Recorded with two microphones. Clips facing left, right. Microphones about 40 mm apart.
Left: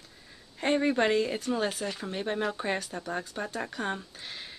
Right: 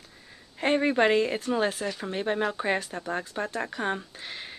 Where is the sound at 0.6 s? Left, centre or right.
Centre.